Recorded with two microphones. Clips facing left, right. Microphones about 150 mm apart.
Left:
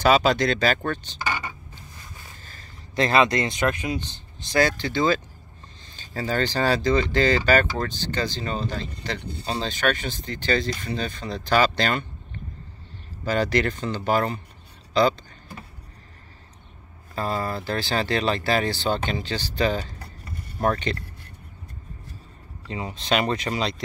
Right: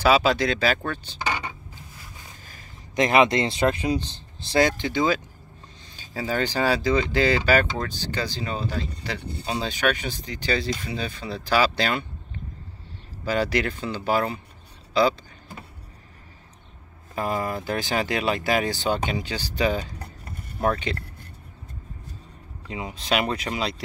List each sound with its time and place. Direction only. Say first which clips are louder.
0.0 s a sound: left 1 dB; 5° right (ahead or behind)
2.4 s speech: even; 15° right (ahead or behind); by 4.6 s 30° right (ahead or behind)
4.6 s speech: even; 15° right (ahead or behind)
13.2 s speech: left 1 dB; 5° right (ahead or behind)
17.1 s speech: right 1 dB; 15° right (ahead or behind)
20.6 s a sound: left 1 dB; 5° right (ahead or behind)
22.7 s speech: left 1 dB; 10° right (ahead or behind)